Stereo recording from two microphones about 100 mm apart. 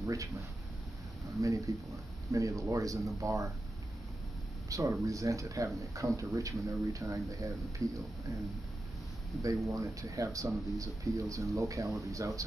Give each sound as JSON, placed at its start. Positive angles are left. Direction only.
{"t": 0.0, "sound": "a sound", "side_deg": -30}
{"t": 1.4, "sound": "speech", "side_deg": -30}
{"t": 4.6, "sound": "speech", "side_deg": -35}
{"t": 9.4, "sound": "speech", "side_deg": -30}